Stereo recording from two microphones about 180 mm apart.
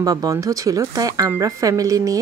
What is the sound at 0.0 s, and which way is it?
Speech, 20° right (ahead or behind).